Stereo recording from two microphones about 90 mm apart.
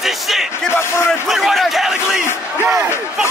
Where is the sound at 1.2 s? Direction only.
Centre (ahead or behind).